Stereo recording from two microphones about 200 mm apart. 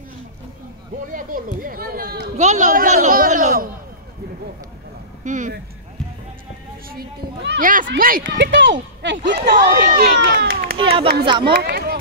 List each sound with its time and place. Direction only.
1.1 s speech: 45° right (ahead or behind)
2.3 s speech: 35° right (ahead or behind)
5.2 s speech: 40° right (ahead or behind)
6.9 s a sound: 50° right (ahead or behind)
7.9 s speech: 45° right (ahead or behind)
8.5 s speech: 65° right (ahead or behind)
10.3 s children playing: 50° right (ahead or behind)
10.8 s speech: 25° right (ahead or behind)
11.6 s speech: 50° right (ahead or behind)